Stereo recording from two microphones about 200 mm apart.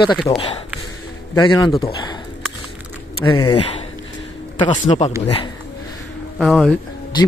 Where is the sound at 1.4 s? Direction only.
25° left (ahead or behind).